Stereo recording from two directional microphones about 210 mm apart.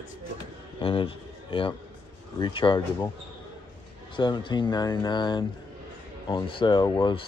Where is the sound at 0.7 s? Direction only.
25° left (ahead or behind).